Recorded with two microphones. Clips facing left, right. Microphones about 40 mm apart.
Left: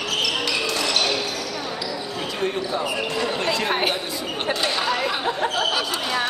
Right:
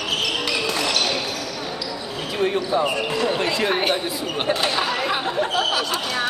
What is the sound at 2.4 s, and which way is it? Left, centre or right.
Speech, centre.